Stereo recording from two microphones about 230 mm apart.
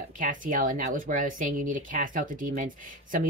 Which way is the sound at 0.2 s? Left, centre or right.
Right.